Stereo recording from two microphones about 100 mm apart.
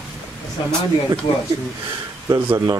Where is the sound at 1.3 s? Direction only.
60° left (ahead or behind).